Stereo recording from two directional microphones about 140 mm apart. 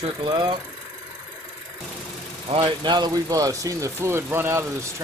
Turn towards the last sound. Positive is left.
turn(degrees=-20)  # may be behind; listen again after turning